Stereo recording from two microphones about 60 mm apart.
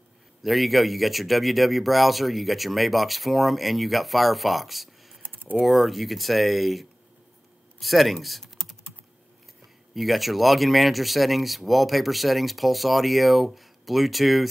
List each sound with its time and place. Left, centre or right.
0.4 s speech: centre
5.2 s typing: right
5.6 s speech: centre
9.9 s speech: centre